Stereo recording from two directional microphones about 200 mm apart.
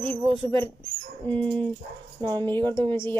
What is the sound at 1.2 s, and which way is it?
Music, 5° left (ahead or behind).